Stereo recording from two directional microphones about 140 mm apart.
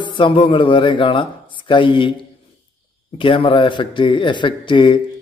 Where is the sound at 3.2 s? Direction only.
40° left (ahead or behind).